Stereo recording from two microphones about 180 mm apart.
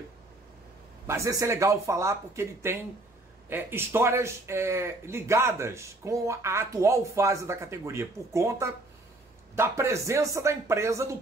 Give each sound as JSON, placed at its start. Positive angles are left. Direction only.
{"t": 1.0, "sound": "a man's voice", "side_deg": -15}